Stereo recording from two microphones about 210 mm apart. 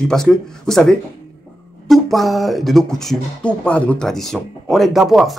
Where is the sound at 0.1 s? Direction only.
Centre (ahead or behind).